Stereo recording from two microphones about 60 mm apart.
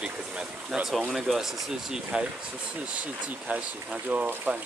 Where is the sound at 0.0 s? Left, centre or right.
Centre.